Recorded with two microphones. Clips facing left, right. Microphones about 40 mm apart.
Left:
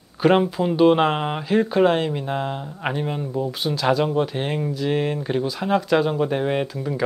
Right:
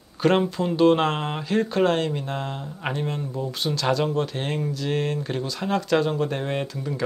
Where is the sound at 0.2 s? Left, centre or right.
Centre.